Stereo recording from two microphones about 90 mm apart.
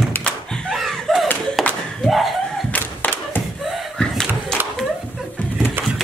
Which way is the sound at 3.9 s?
10° left (ahead or behind).